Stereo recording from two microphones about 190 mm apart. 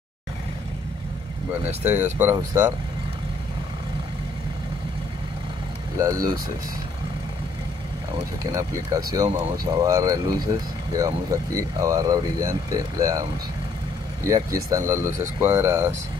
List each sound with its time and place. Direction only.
1.8 s speech: 10° right (ahead or behind)
5.9 s speech: 15° right (ahead or behind)
8.5 s speech: 15° right (ahead or behind)